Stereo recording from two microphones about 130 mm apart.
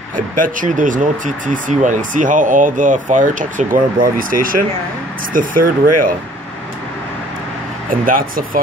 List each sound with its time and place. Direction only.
0.4 s speech: 85° right
7.9 s speech: 90° right